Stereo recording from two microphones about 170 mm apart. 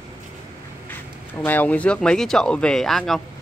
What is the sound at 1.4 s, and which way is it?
Speech, 10° left (ahead or behind).